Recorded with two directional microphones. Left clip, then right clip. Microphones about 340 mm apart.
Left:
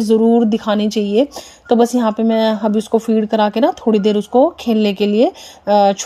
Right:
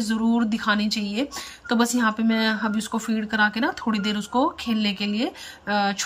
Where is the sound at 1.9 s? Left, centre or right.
Centre.